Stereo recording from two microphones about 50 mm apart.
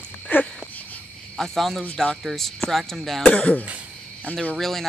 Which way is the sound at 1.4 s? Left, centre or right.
Centre.